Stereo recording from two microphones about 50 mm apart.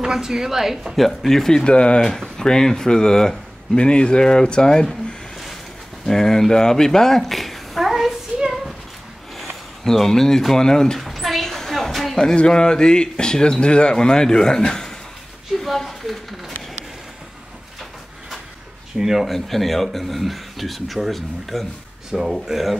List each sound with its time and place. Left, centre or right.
0.0 s speech: centre
1.0 s speech: centre
6.0 s speech: centre
8.4 s a sound: centre
9.4 s speech: centre
11.0 s a sound: centre
12.2 s speech: centre
15.6 s a sound: centre
18.9 s speech: centre
19.3 s speech: centre